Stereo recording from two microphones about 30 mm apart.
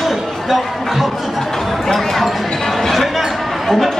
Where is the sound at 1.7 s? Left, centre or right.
Centre.